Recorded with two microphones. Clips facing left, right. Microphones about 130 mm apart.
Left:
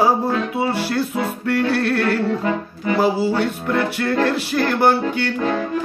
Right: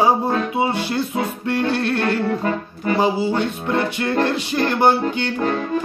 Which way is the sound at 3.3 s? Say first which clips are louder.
Left 1 dB; 25° right (ahead or behind).